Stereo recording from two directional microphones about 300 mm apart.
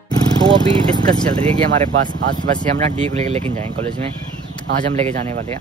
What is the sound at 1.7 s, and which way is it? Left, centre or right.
Speech, right.